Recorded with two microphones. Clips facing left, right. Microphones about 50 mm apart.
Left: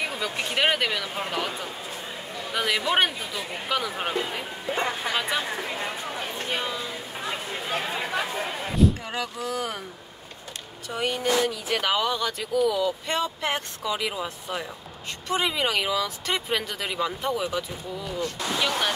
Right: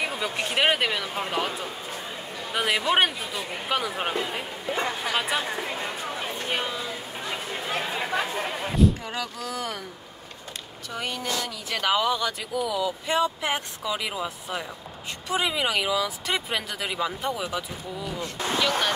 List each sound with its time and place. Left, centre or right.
0.0 s speech: centre
2.5 s speech: centre
4.7 s speech: centre
5.1 s speech: centre
6.0 s a sound: right
6.5 s speech: centre
7.2 s chatter: centre
8.0 s chatter: right
9.0 s speech: centre
10.9 s speech: centre
11.8 s speech: centre
18.2 s speech: right